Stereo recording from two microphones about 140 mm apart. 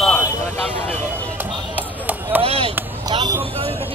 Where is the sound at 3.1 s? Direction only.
30° right (ahead or behind).